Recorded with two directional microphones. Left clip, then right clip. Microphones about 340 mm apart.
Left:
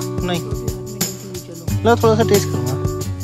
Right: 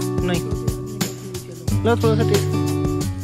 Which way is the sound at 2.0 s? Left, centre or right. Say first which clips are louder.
Left 5 dB; centre.